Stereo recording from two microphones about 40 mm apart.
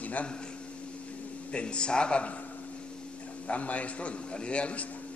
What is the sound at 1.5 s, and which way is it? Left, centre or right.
Speech, left.